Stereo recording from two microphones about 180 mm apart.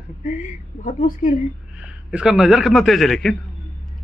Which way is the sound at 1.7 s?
5° right (ahead or behind).